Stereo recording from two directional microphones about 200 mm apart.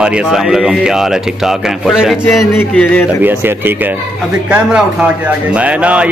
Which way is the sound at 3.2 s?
10° right (ahead or behind).